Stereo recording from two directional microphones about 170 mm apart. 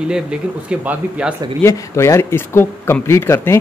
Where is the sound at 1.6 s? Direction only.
15° left (ahead or behind).